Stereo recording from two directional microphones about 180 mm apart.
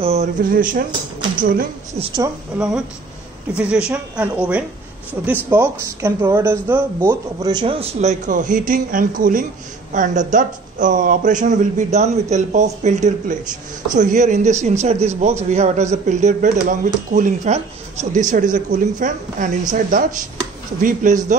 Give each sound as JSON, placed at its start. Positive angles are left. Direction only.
{"t": 0.0, "sound": "speech", "side_deg": -40}
{"t": 2.0, "sound": "speech", "side_deg": -30}
{"t": 2.2, "sound": "a woman's voice", "side_deg": -5}